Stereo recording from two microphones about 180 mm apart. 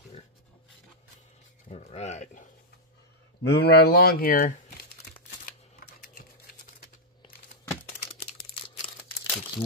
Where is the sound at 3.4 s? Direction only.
65° left (ahead or behind).